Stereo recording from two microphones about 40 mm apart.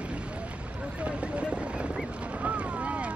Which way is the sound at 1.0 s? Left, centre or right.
Right.